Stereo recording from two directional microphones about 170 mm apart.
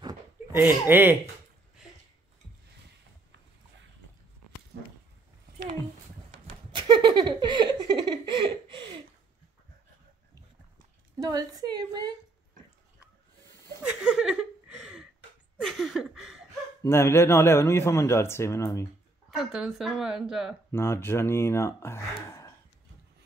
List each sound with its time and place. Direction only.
0.0 s a sound: 15° right (ahead or behind)
6.7 s a sound: 25° right (ahead or behind)
8.4 s chuckle: 30° right (ahead or behind)
11.1 s a woman's voice: 20° right (ahead or behind)
13.8 s chuckle: 5° right (ahead or behind)
15.6 s a sound: centre (ahead or behind)
16.8 s a man's voice: 15° left (ahead or behind)
19.3 s speech: centre (ahead or behind)
20.7 s a man's voice: 15° left (ahead or behind)